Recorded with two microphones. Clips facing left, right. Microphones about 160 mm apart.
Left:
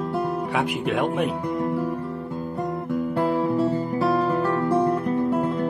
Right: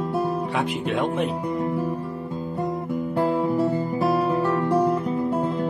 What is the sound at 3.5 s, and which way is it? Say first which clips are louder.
Music: even; 10° right (ahead or behind).